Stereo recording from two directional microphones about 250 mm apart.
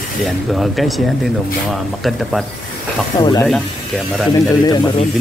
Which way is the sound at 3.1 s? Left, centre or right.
Centre.